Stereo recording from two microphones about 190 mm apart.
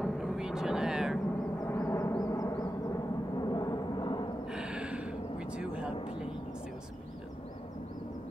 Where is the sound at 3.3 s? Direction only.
20° left (ahead or behind).